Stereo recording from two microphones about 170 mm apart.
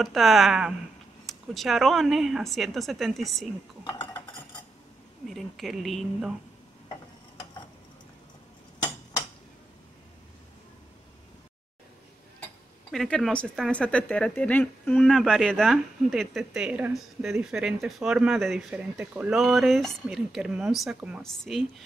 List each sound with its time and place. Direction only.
0.0 s speech: centre (ahead or behind)
5.3 s speech: centre (ahead or behind)
8.7 s tick-tock: 20° left (ahead or behind)
12.9 s speech: centre (ahead or behind)